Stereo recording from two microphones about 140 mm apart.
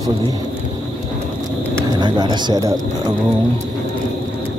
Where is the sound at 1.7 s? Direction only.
30° right (ahead or behind).